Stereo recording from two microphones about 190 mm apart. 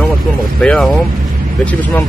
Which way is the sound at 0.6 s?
Centre (ahead or behind).